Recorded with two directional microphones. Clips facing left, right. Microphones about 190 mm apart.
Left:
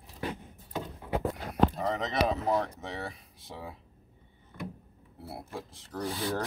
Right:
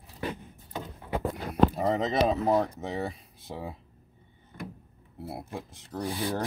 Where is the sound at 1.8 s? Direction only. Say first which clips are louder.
Right 4 dB; 30° right (ahead or behind).